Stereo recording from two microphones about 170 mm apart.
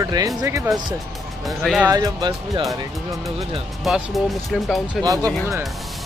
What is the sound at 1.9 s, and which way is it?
Speech, 20° right (ahead or behind).